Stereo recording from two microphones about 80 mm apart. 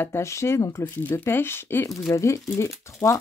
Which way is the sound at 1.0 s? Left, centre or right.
Left.